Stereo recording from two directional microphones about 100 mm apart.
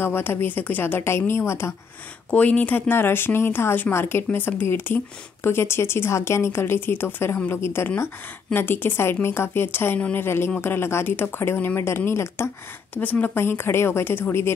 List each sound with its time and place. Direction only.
0.0 s speech: 20° left (ahead or behind)
2.3 s speech: 15° left (ahead or behind)